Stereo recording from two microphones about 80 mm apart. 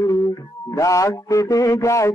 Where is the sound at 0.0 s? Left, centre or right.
Left.